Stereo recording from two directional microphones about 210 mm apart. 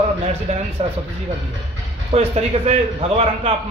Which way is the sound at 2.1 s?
30° right (ahead or behind).